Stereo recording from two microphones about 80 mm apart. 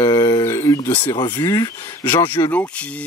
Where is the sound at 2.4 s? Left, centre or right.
Left.